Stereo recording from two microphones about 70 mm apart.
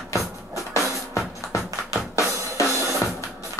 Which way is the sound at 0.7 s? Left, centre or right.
Left.